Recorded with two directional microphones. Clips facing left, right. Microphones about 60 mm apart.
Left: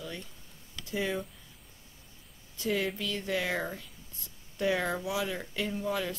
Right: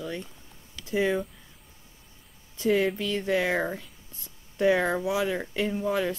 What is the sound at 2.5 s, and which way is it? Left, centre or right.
Speech, right.